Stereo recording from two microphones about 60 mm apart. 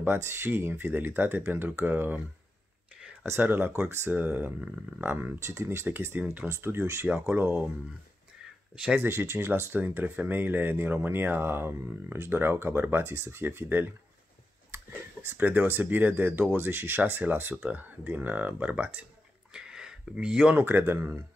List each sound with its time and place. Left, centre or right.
0.0 s speech: right
3.3 s speech: right
7.2 s speech: right
8.7 s speech: centre
9.0 s speech: right
19.5 s a sound: centre
20.5 s speech: right